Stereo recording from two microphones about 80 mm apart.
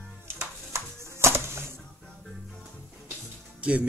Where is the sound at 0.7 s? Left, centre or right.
Right.